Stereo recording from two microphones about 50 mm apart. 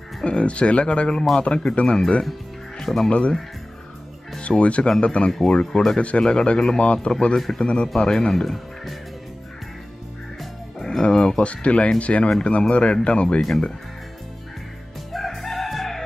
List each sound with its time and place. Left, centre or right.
0.2 s speech: left
2.8 s speech: centre
3.1 s speech: left
4.4 s speech: left
5.9 s speech: left; by 8.9 s centre
10.4 s music: centre; by 11.9 s left
12.0 s speech: left
13.4 s speech: centre
15.1 s crowing: centre